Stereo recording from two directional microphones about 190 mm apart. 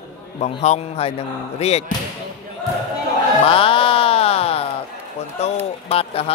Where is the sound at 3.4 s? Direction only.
30° left (ahead or behind).